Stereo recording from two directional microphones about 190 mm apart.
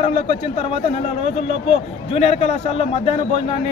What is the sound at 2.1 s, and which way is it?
Speech, 30° left (ahead or behind).